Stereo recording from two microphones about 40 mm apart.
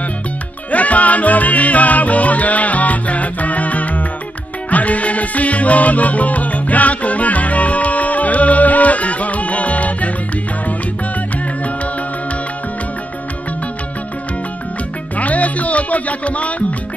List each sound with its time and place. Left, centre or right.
0.7 s music: left
15.1 s music: left